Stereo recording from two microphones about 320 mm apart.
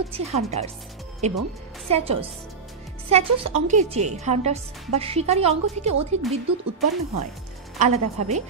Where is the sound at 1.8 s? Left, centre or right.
Centre.